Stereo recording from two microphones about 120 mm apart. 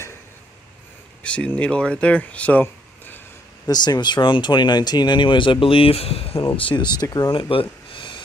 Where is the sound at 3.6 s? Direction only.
35° left (ahead or behind).